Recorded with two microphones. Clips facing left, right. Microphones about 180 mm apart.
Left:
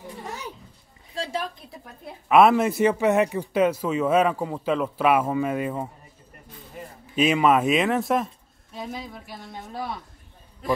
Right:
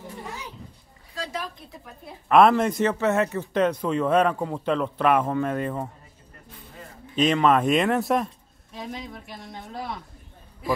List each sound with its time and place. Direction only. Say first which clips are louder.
1.1 s a woman's voice: left 3 dB; 30° left (ahead or behind)
2.2 s a man's voice: even; 5° left (ahead or behind)
7.2 s speech: even; 10° left (ahead or behind)